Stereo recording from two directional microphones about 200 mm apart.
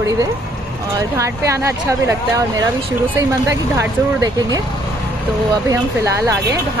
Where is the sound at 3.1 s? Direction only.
15° right (ahead or behind).